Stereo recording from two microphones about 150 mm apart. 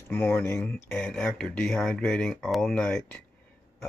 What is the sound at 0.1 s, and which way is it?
Speech, 15° left (ahead or behind).